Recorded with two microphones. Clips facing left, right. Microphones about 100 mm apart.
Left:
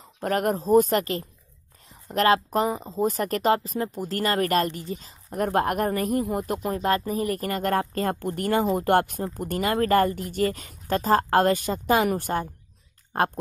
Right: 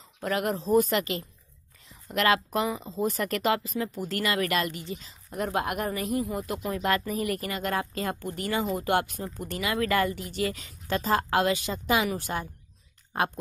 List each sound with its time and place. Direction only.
0.2 s speech: 45° left (ahead or behind)
7.4 s speech: 45° left (ahead or behind)